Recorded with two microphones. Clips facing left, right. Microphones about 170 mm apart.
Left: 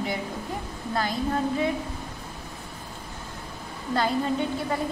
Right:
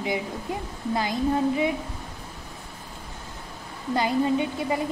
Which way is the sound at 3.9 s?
15° right (ahead or behind).